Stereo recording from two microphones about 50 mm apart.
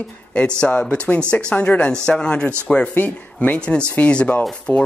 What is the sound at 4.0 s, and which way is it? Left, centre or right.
Speech, left.